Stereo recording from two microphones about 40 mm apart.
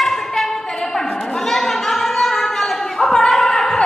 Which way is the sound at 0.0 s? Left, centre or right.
Centre.